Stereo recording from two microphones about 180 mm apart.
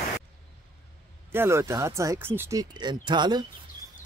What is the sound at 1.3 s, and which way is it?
Speech, 15° right (ahead or behind).